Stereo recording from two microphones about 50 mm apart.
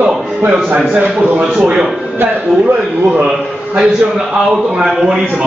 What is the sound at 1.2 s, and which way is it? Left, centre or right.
A man's voice, right.